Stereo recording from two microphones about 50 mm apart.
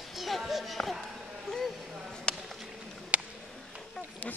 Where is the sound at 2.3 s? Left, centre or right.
Centre.